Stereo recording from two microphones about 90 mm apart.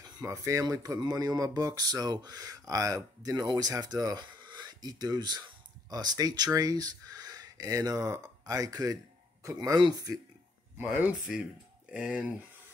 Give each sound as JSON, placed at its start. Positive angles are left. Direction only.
{"t": 0.0, "sound": "speech", "side_deg": -40}
{"t": 10.8, "sound": "speech", "side_deg": -20}